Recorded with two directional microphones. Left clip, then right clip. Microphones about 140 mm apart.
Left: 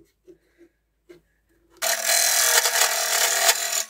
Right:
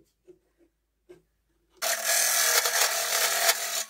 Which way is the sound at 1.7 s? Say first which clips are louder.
Left 5 dB; 5° left (ahead or behind).